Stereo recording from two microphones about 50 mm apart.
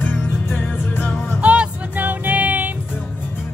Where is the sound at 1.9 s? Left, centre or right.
Right.